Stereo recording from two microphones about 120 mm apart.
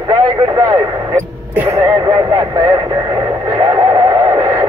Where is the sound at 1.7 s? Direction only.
35° right (ahead or behind).